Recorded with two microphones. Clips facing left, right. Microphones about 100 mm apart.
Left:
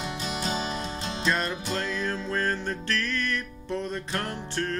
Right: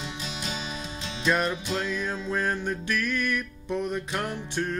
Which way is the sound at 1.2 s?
10° right (ahead or behind).